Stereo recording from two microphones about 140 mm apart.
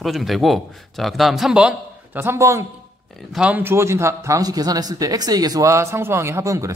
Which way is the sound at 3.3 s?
10° right (ahead or behind).